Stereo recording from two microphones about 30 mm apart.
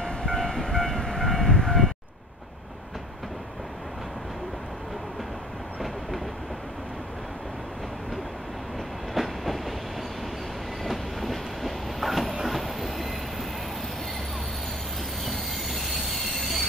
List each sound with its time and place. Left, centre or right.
0.2 s train: centre
9.1 s train: centre
10.8 s train: centre
15.7 s train: centre